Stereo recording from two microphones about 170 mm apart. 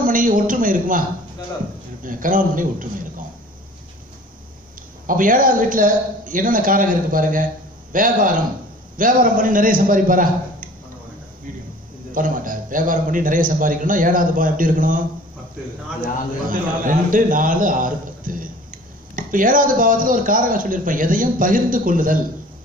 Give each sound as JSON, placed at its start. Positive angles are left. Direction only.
{"t": 0.0, "sound": "a man's voice", "side_deg": -55}
{"t": 2.0, "sound": "a man's voice", "side_deg": -50}
{"t": 5.0, "sound": "a man's voice", "side_deg": -55}
{"t": 12.1, "sound": "a man's voice", "side_deg": -55}
{"t": 16.4, "sound": "a man's voice", "side_deg": -50}